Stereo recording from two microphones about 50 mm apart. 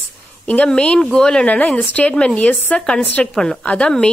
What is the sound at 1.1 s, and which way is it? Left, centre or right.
Speech, centre.